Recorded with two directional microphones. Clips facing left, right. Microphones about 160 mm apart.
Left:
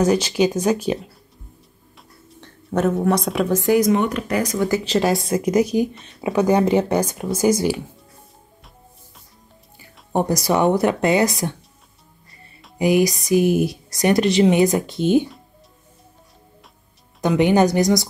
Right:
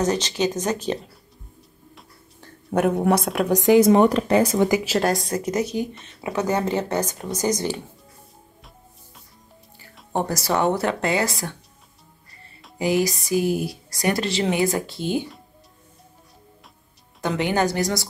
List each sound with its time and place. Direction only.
0.0 s speech: 10° left (ahead or behind)
2.7 s a woman's voice: 15° right (ahead or behind)
3.2 s a woman's voice: centre (ahead or behind)
3.4 s speech: 20° right (ahead or behind)
3.8 s speech: 35° right (ahead or behind)
4.6 s a woman's voice: 15° right (ahead or behind)
4.9 s a woman's voice: centre (ahead or behind)
5.5 s speech: 15° left (ahead or behind)
10.1 s speech: 15° left (ahead or behind)
12.7 s speech: 15° left (ahead or behind)
17.2 s speech: 15° left (ahead or behind)